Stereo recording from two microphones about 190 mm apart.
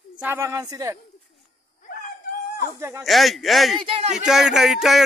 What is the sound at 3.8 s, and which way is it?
Speech, 30° right (ahead or behind).